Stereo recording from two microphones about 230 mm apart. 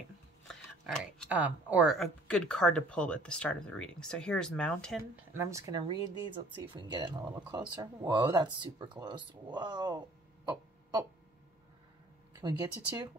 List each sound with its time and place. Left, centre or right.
0.5 s speech: centre
5.3 s speech: centre
12.4 s speech: centre